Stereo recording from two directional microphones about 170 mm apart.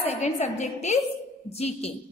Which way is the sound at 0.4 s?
40° left (ahead or behind).